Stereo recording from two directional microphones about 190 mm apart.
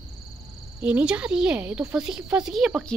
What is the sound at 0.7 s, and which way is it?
A woman's voice, 5° right (ahead or behind).